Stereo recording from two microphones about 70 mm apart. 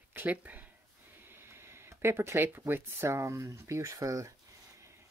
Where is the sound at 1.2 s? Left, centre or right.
Right.